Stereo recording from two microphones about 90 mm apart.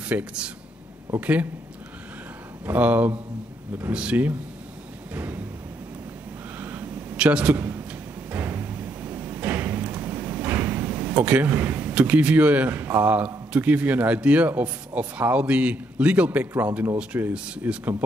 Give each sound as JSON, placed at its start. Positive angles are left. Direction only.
{"t": 0.0, "sound": "a man's voice", "side_deg": -15}
{"t": 2.6, "sound": "a man's voice", "side_deg": -20}
{"t": 6.6, "sound": "a sound", "side_deg": -20}
{"t": 8.3, "sound": "thump", "side_deg": -20}
{"t": 13.5, "sound": "a man's voice", "side_deg": -15}